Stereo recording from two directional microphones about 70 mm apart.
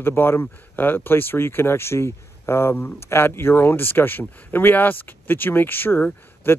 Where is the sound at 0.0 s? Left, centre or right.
Left.